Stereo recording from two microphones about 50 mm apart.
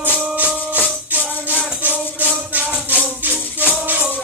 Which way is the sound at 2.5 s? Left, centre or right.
Right.